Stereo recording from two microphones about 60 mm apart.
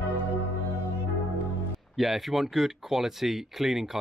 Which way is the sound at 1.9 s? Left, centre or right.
Centre.